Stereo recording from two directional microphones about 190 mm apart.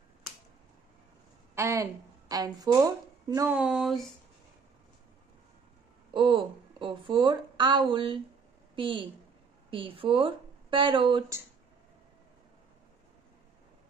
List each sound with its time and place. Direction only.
1.5 s a woman's voice: 15° right (ahead or behind); by 4.1 s centre (ahead or behind)
6.1 s a woman's voice: 25° right (ahead or behind)